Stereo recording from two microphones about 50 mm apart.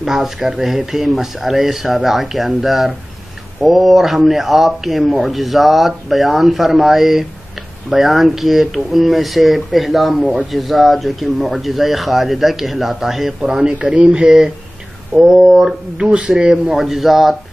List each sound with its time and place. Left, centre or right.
0.0 s speech: centre
13.4 s speech: centre
16.0 s chopping: centre
16.7 s speech: centre